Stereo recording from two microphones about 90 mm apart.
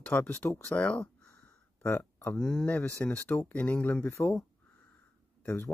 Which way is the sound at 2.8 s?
20° left (ahead or behind).